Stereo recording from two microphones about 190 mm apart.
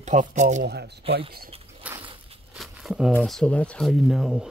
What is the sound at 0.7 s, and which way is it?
Speech, 60° right (ahead or behind).